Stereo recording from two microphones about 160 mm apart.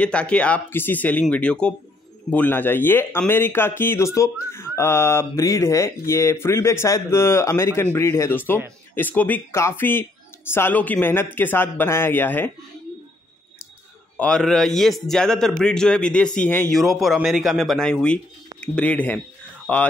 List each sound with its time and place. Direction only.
0.0 s speech: 5° left (ahead or behind)
14.1 s speech: 5° left (ahead or behind)